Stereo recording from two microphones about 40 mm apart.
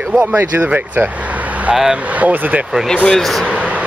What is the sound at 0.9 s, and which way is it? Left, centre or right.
Vehicle, right.